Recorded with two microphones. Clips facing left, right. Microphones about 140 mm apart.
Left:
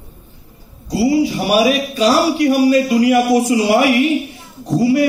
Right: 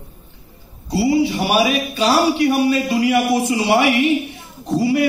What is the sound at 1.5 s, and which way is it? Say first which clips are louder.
A man's voice: left 3 dB; 35° left (ahead or behind).